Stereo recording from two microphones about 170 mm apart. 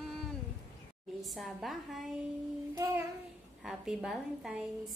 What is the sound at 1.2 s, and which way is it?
Speech, centre (ahead or behind).